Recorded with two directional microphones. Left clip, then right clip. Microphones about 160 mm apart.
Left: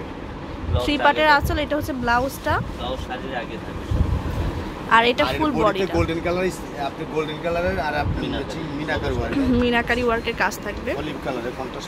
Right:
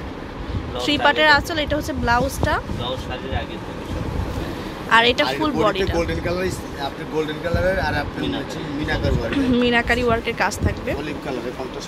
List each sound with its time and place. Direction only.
0.7 s speech: centre (ahead or behind)
4.8 s speech: 5° left (ahead or behind)
5.9 s speech: 35° left (ahead or behind)
9.3 s speech: 5° right (ahead or behind)